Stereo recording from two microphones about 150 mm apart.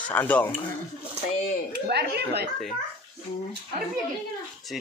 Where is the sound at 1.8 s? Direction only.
90° right.